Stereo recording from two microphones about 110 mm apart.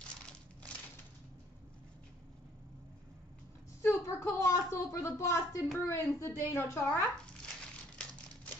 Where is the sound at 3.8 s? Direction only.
25° left (ahead or behind).